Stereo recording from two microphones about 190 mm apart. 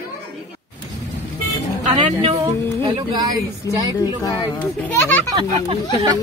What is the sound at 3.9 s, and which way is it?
Speech, 20° left (ahead or behind).